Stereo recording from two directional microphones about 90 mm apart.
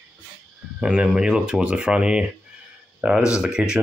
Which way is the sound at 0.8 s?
10° right (ahead or behind).